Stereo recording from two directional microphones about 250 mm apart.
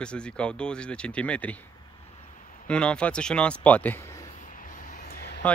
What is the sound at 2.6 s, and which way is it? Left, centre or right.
Speech, centre.